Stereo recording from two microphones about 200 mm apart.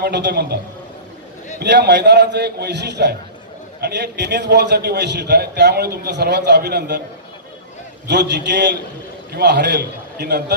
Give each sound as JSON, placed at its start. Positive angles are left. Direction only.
{"t": 0.0, "sound": "a man's voice", "side_deg": -55}
{"t": 1.6, "sound": "a man's voice", "side_deg": -60}
{"t": 8.1, "sound": "a man's voice", "side_deg": -60}